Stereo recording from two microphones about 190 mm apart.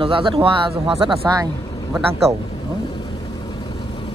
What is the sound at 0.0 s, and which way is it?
Speech, 30° right (ahead or behind).